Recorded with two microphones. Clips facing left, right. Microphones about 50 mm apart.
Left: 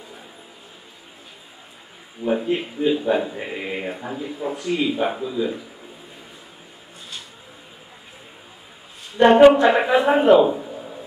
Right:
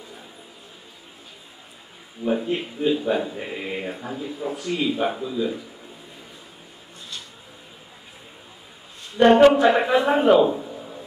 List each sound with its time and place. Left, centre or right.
2.2 s speech: centre
9.1 s a man's voice: centre